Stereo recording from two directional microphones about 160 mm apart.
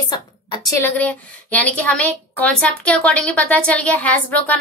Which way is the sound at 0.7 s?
10° left (ahead or behind).